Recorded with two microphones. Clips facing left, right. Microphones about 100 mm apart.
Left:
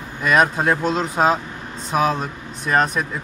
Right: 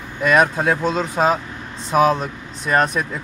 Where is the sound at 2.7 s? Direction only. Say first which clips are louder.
Right 1 dB; centre (ahead or behind).